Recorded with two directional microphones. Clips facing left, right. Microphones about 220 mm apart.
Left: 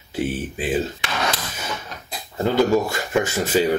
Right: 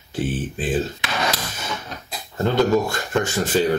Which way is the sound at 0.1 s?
10° left (ahead or behind).